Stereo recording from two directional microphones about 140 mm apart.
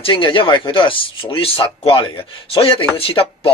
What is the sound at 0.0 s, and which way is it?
Speech, 40° left (ahead or behind).